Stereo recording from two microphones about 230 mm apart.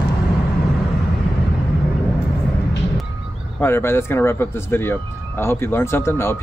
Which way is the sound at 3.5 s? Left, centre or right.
Centre.